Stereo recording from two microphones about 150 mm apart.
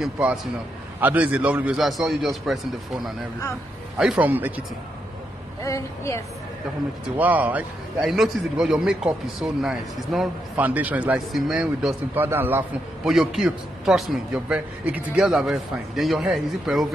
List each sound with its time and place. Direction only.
0.0 s a man's voice: 5° right (ahead or behind)
4.0 s a man's voice: 5° right (ahead or behind)
5.6 s a woman's voice: 20° left (ahead or behind)
7.2 s a man's voice: 10° right (ahead or behind)
13.1 s speech: centre (ahead or behind)